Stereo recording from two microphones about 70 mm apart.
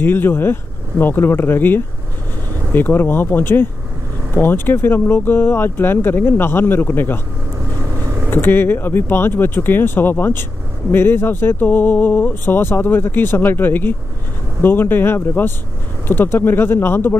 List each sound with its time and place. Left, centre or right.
0.0 s speech: left
8.3 s speech: left